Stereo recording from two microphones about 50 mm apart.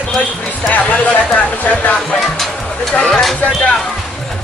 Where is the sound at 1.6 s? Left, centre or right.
Left.